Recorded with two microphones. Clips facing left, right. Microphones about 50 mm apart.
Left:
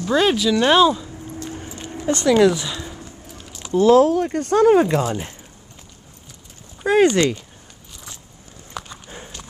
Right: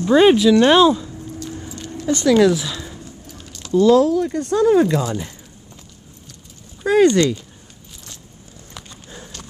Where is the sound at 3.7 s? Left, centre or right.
Left.